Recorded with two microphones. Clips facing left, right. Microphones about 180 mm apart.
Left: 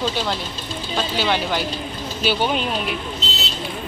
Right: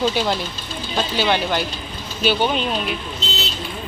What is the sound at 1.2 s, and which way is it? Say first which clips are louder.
Speech: right 2 dB; centre (ahead or behind).